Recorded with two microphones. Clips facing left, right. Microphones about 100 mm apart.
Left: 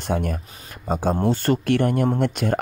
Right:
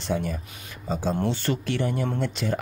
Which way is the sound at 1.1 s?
40° left (ahead or behind).